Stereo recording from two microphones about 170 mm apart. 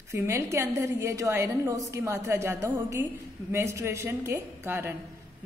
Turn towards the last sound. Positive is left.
turn(degrees=-15)  # may be behind; listen again after turning